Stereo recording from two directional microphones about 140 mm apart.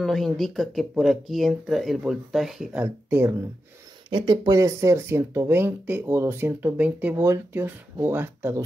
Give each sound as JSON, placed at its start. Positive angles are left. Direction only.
{"t": 0.0, "sound": "speech", "side_deg": 0}
{"t": 2.8, "sound": "speech", "side_deg": -15}
{"t": 4.1, "sound": "speech", "side_deg": -30}